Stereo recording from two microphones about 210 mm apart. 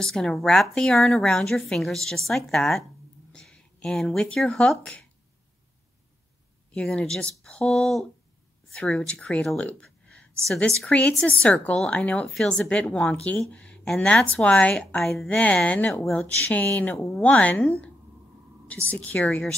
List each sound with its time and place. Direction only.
0.0 s speech: centre (ahead or behind)
6.7 s a woman's voice: 5° left (ahead or behind)